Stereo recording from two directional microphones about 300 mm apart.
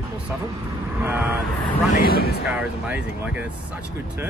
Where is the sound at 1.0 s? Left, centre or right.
Centre.